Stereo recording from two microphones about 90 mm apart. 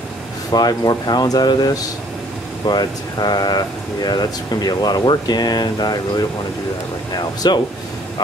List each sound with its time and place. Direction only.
0.5 s speech: 50° left (ahead or behind)